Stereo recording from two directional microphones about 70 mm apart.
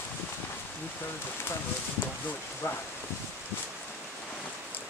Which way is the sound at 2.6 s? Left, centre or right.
Left.